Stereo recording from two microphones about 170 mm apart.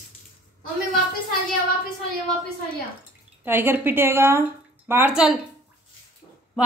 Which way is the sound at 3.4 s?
10° right (ahead or behind).